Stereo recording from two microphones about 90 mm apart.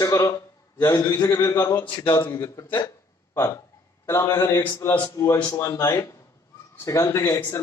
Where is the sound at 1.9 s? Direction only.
65° left (ahead or behind).